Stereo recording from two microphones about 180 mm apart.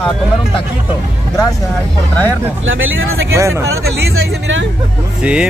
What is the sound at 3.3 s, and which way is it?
Speech, 15° right (ahead or behind).